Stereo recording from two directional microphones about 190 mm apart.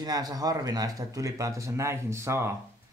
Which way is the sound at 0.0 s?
20° right (ahead or behind).